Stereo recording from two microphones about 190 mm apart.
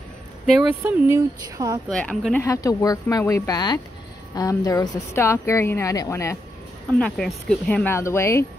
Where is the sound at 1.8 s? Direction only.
5° left (ahead or behind).